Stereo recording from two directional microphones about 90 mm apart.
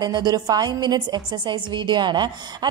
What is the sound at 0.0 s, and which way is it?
A woman's voice, 50° right (ahead or behind).